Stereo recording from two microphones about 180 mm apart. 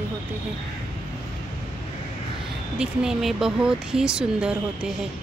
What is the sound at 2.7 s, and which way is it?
Speech, 5° right (ahead or behind).